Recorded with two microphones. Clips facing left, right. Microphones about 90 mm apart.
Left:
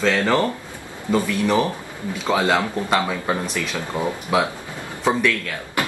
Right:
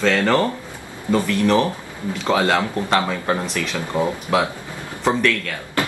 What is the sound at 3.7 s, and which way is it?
Speech, 20° right (ahead or behind).